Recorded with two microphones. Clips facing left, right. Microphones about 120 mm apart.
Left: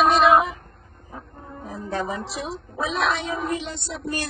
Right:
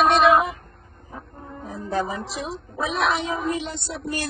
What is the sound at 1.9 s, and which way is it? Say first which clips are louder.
Speech: right 2 dB; centre (ahead or behind).